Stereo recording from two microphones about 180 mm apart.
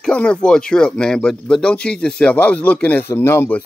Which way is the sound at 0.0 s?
5° left (ahead or behind).